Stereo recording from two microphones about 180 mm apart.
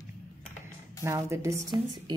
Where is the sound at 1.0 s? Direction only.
15° right (ahead or behind).